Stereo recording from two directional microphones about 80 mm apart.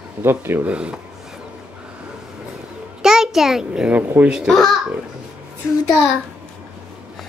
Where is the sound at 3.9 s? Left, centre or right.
Centre.